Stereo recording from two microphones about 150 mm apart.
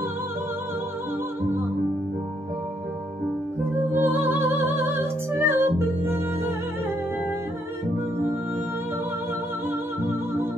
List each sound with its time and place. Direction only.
3.9 s music: 15° right (ahead or behind)